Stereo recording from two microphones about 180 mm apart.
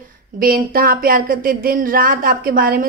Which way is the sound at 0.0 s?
50° right (ahead or behind).